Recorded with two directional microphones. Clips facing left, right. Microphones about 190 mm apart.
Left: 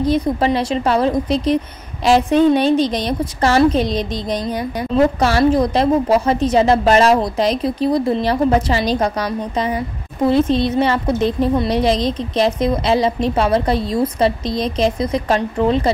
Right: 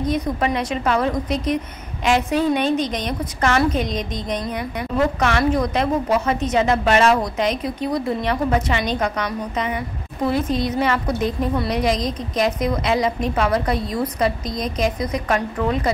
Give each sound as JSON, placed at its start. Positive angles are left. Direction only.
{"t": 0.0, "sound": "a woman's voice", "side_deg": 30}